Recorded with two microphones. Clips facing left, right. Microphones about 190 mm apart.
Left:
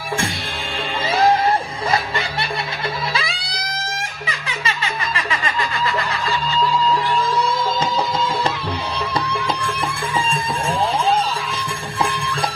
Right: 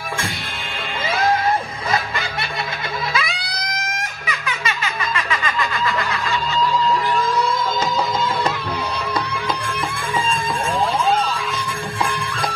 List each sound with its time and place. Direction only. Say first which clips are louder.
3.2 s music: right 1 dB; 30° left (ahead or behind)